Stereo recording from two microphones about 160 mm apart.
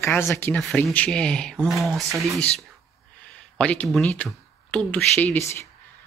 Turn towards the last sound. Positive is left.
turn(degrees=10)  # may be behind; listen again after turning